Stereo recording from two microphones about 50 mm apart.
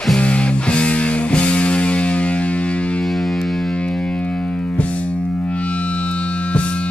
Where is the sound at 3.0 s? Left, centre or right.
Centre.